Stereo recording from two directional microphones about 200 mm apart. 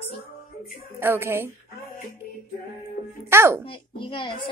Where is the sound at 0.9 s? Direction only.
10° right (ahead or behind).